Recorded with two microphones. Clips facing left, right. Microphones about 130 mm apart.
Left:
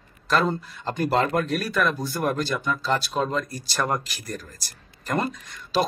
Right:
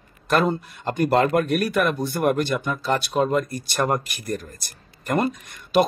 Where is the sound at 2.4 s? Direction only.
55° right (ahead or behind).